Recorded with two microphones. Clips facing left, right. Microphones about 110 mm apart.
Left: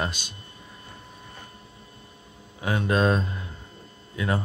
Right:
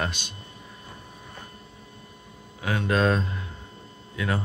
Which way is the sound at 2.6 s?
25° left (ahead or behind).